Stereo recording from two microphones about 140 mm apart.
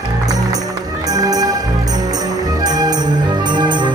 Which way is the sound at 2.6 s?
30° right (ahead or behind).